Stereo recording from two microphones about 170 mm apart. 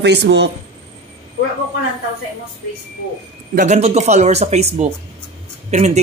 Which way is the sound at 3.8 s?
40° right (ahead or behind).